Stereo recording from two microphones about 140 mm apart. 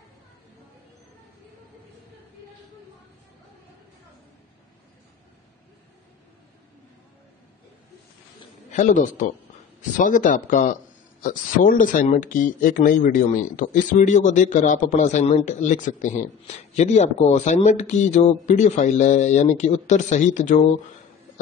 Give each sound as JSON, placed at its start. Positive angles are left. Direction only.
{"t": 8.7, "sound": "a man's voice", "side_deg": 65}
{"t": 11.2, "sound": "speech", "side_deg": 80}